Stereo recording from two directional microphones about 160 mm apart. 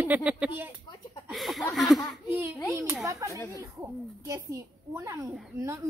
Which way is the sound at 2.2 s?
15° right (ahead or behind).